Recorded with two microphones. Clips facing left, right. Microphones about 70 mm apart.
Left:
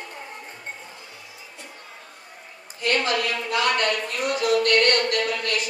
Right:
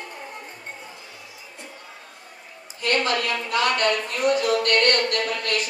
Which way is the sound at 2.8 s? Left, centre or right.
Right.